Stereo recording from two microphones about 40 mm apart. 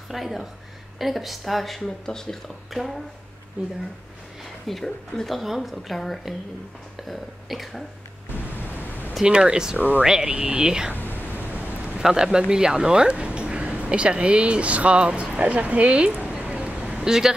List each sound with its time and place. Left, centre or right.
0.1 s a woman's voice: centre
4.8 s speech: centre
5.3 s a woman's voice: centre
8.5 s pink noise: left
9.4 s speech: centre
11.0 s a sound: left
12.0 s speech: centre; by 16.1 s right
16.3 s a sound: right